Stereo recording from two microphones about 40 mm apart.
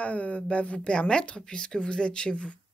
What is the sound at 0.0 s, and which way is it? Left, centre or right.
Speech, left.